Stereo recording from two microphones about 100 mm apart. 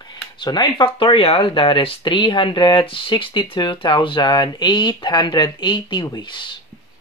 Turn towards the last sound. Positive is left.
turn(degrees=50)  # may be behind; listen again after turning